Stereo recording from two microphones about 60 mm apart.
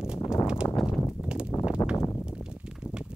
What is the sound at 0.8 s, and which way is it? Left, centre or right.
Clip-clop, centre.